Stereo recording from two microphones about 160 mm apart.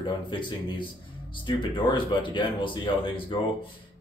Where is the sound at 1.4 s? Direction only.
30° left (ahead or behind).